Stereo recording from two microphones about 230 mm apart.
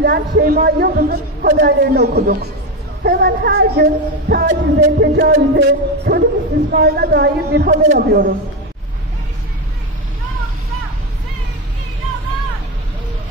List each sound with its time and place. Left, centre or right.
0.0 s speech: right